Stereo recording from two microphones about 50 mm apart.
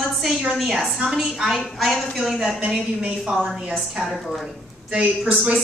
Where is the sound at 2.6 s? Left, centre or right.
Right.